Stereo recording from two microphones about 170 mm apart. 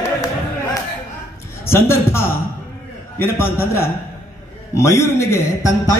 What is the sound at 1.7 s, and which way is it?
A man's voice, 15° left (ahead or behind).